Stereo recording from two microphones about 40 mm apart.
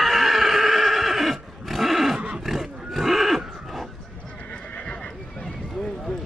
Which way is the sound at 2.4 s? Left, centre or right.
Centre.